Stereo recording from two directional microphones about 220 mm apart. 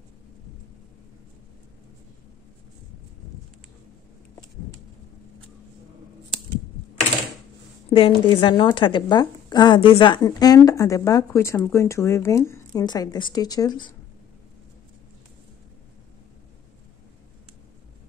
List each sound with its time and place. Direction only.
7.9 s a woman's voice: 25° left (ahead or behind)